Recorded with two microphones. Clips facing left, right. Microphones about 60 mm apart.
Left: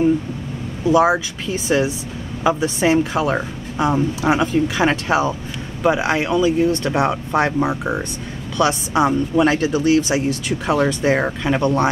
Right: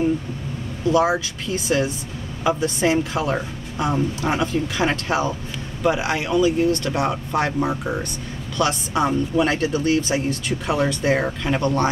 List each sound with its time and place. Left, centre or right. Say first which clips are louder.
0.8 s speech: left 4 dB; centre